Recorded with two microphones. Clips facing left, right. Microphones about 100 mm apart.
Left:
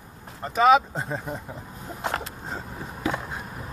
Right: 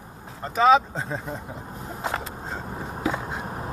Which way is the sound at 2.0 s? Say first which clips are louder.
Even; 5° right (ahead or behind).